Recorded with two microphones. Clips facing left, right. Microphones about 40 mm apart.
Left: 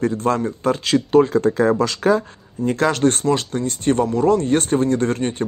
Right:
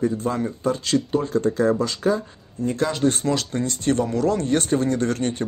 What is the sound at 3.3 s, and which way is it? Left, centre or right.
Speech, left.